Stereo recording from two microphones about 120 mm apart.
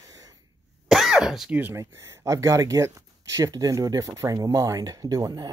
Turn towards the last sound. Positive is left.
turn(degrees=-30)  # may be behind; listen again after turning